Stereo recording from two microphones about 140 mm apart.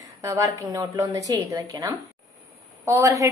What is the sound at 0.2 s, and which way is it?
A woman's voice, 25° right (ahead or behind).